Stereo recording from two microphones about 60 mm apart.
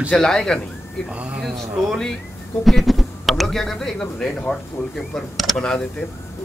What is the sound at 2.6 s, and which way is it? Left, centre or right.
A man's voice, centre.